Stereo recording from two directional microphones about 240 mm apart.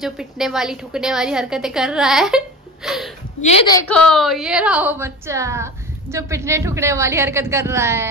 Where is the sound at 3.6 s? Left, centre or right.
Centre.